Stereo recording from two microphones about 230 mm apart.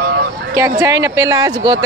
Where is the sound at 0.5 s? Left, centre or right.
Centre.